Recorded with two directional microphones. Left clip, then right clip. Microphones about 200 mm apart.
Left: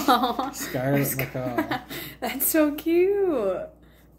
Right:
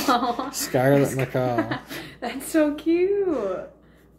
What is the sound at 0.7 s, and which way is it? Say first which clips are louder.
Speech: right 8 dB; 50° right (ahead or behind).